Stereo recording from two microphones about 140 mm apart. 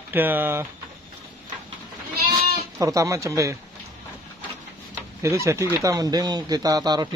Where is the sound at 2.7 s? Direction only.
25° right (ahead or behind).